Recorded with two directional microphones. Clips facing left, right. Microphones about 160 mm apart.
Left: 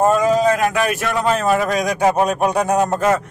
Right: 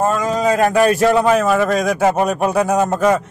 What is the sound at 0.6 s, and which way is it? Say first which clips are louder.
Speech: right 6 dB; 30° right (ahead or behind).